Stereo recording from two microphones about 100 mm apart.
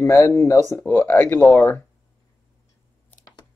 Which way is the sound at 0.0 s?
30° left (ahead or behind).